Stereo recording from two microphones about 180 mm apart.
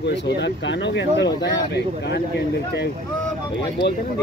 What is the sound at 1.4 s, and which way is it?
Speech, 70° left (ahead or behind).